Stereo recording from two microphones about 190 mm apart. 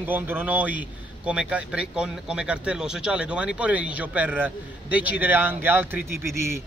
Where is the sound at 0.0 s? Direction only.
10° right (ahead or behind).